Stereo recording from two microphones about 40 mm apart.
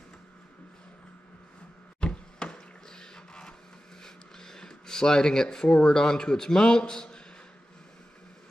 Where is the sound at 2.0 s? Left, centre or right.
Left.